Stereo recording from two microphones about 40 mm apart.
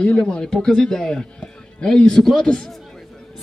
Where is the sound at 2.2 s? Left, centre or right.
Centre.